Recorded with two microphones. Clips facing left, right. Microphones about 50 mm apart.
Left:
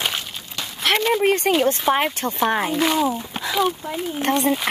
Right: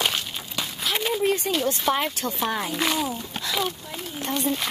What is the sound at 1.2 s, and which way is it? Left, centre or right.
Speech, left.